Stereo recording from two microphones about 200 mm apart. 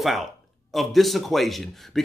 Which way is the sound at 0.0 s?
Centre (ahead or behind).